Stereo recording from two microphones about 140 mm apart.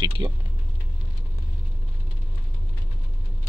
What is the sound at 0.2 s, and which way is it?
Speech, 25° right (ahead or behind).